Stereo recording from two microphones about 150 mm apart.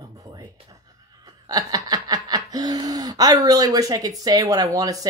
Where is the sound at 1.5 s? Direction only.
25° right (ahead or behind).